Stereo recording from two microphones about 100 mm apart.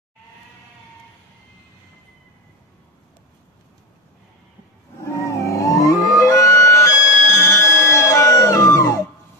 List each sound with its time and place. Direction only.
5.0 s vehicle: 25° left (ahead or behind)
6.1 s music: 35° left (ahead or behind)